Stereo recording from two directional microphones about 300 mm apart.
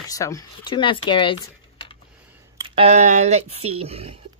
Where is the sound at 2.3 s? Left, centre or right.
Centre.